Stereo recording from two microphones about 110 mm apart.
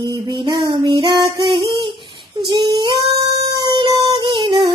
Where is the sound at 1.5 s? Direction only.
50° right (ahead or behind).